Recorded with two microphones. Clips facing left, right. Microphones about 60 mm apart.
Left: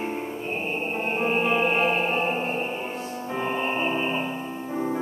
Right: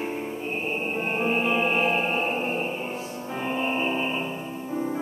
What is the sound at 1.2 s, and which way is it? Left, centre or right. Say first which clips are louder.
Music: left 1 dB; centre.